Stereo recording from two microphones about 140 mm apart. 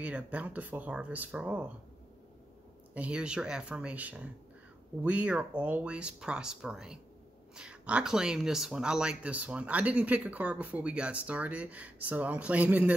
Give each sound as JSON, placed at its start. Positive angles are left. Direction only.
{"t": 0.0, "sound": "speech", "side_deg": -10}
{"t": 2.9, "sound": "speech", "side_deg": -10}